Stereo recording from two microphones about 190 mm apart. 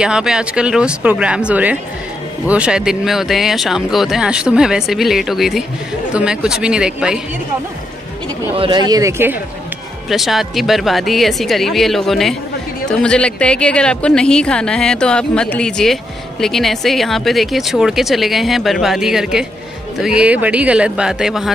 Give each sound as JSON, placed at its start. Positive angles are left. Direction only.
{"t": 0.0, "sound": "a woman's voice", "side_deg": -5}
{"t": 8.5, "sound": "speech", "side_deg": -25}
{"t": 10.0, "sound": "a woman's voice", "side_deg": 0}